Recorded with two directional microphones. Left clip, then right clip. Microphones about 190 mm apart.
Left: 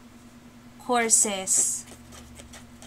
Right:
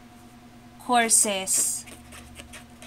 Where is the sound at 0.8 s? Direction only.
5° right (ahead or behind).